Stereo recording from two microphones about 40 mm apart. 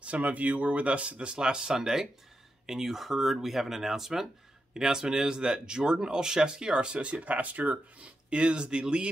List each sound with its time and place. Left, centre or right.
0.0 s speech: right
8.0 s speech: right